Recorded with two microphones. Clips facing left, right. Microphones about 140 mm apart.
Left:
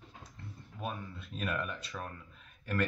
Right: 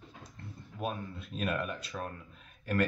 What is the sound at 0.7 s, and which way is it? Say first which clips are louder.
Speech: right 4 dB; 15° right (ahead or behind).